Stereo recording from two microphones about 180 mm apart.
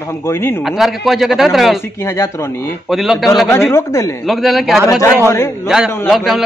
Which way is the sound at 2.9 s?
Centre (ahead or behind).